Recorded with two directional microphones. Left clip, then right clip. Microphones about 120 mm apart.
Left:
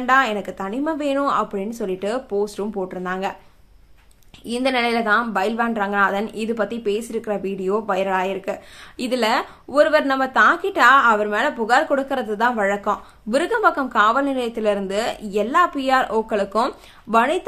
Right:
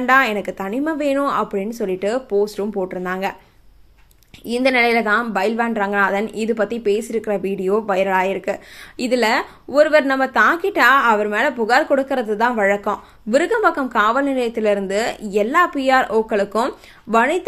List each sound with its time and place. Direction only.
0.0 s a woman's voice: 30° right (ahead or behind)
4.5 s a woman's voice: 25° right (ahead or behind)